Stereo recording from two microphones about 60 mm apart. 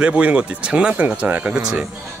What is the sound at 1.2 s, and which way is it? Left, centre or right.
Speech, right.